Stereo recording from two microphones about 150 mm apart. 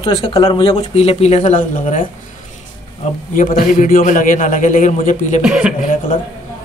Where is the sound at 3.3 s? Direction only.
65° left (ahead or behind).